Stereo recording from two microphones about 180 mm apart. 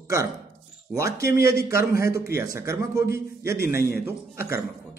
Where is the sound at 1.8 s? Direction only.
55° left (ahead or behind).